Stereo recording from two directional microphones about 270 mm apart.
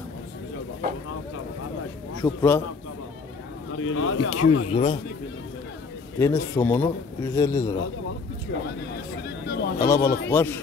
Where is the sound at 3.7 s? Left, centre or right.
Left.